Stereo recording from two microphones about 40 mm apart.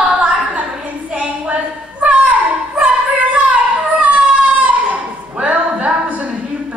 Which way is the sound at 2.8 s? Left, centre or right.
Right.